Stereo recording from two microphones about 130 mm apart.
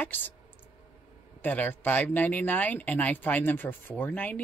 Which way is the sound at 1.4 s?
15° left (ahead or behind).